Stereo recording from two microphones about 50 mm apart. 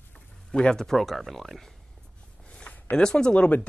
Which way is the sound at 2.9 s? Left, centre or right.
Centre.